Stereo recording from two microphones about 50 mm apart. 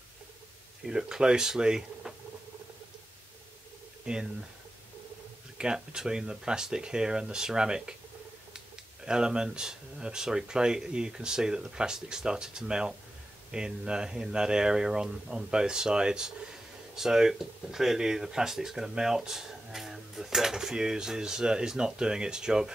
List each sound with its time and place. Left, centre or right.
0.8 s speech: centre
4.0 s speech: centre
5.6 s speech: centre